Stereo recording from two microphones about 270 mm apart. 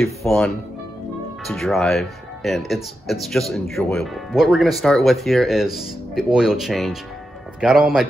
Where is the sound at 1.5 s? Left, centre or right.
Centre.